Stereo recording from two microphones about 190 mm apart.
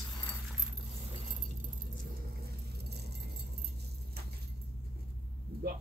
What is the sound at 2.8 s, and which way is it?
Keys jangling, 60° right (ahead or behind).